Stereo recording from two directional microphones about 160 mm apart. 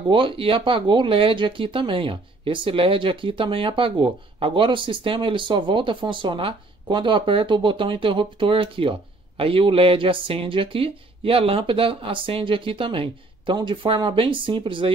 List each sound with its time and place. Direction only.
0.1 s speech: 30° right (ahead or behind)